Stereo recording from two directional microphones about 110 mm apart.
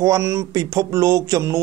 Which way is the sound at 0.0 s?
30° right (ahead or behind).